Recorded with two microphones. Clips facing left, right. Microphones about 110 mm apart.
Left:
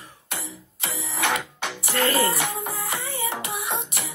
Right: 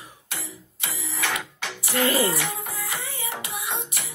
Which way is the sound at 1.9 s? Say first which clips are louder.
Even; 15° right (ahead or behind).